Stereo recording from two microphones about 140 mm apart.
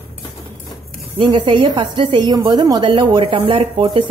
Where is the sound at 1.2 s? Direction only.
40° right (ahead or behind).